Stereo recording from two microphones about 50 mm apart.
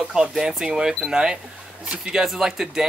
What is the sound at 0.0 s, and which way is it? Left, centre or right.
Speech, centre.